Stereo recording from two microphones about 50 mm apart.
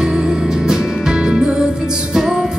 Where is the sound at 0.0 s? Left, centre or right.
Centre.